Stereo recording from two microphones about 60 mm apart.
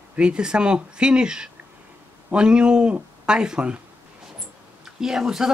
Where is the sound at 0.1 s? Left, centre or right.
Centre.